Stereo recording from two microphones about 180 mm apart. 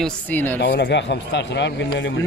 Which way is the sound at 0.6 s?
65° left (ahead or behind).